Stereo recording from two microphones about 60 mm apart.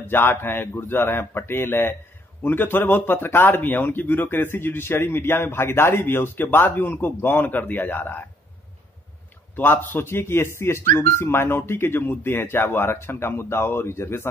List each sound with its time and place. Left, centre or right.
0.0 s speech: left
9.6 s speech: left